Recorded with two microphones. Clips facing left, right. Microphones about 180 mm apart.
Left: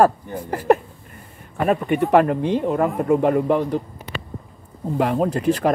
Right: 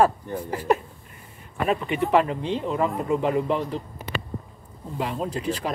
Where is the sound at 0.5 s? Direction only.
50° left (ahead or behind).